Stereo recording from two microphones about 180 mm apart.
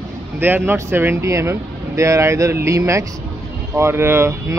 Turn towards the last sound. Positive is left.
turn(degrees=-15)  # may be behind; listen again after turning